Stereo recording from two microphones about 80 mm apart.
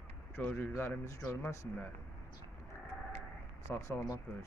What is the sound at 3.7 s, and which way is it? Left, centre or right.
Speech, left.